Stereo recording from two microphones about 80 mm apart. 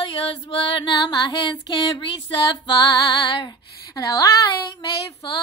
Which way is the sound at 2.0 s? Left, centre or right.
Left.